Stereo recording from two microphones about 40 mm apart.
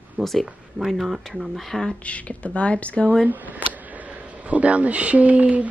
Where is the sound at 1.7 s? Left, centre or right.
Centre.